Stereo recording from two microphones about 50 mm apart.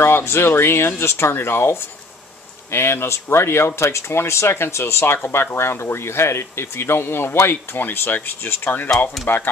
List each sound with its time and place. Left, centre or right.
0.0 s speech: left
5.1 s speech: left
9.2 s speech: centre